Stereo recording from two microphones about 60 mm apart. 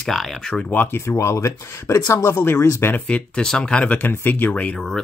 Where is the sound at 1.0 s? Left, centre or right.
Left.